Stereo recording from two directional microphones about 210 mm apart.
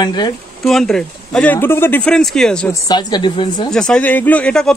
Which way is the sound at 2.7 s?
20° left (ahead or behind).